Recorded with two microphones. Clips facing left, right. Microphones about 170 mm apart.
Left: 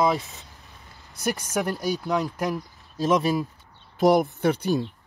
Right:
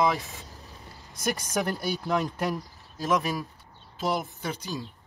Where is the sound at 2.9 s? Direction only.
25° left (ahead or behind).